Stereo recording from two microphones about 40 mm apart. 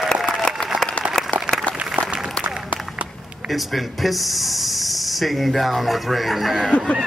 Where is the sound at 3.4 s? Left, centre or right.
Centre.